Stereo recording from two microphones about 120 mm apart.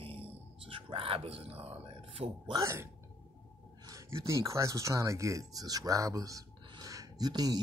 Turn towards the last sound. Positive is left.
turn(degrees=-35)  # may be behind; listen again after turning